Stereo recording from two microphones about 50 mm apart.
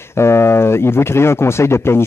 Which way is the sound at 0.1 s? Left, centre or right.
Left.